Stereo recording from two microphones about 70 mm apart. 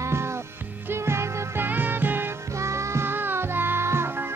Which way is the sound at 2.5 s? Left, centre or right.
Right.